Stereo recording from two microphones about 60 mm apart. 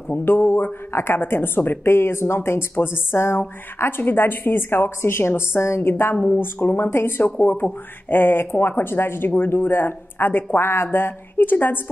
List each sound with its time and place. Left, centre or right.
0.1 s speech: left
6.1 s speech: left
6.4 s speech: left